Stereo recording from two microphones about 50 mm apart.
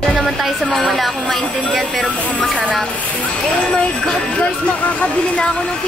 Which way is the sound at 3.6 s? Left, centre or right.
Left.